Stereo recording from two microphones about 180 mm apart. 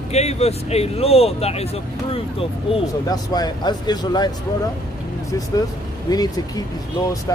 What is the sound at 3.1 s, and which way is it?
Speech, 20° left (ahead or behind).